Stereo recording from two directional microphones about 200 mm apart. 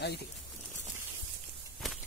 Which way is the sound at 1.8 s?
Centre (ahead or behind).